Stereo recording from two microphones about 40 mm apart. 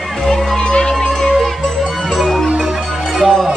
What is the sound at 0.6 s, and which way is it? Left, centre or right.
Music, left.